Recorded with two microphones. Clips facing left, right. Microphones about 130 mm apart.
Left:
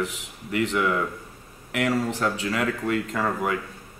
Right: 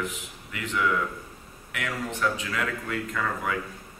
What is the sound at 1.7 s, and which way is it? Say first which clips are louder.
Speech: left 8 dB; 35° left (ahead or behind).